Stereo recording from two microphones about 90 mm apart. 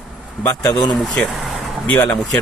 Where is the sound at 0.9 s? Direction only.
Centre (ahead or behind).